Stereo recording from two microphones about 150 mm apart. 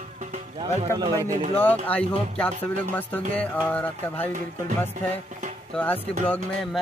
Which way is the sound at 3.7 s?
10° left (ahead or behind).